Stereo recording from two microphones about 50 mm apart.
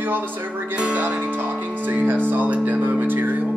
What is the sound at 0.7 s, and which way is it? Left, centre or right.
Speech, right.